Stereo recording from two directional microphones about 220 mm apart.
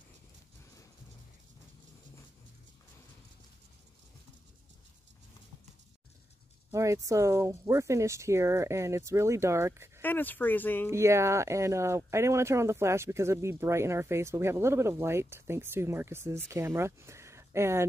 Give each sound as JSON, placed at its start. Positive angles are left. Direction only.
{"t": 6.7, "sound": "speech", "side_deg": -15}
{"t": 10.0, "sound": "speech", "side_deg": 10}
{"t": 10.9, "sound": "speech", "side_deg": -10}